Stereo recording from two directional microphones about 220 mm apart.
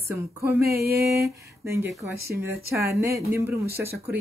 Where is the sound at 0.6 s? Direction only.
45° right (ahead or behind).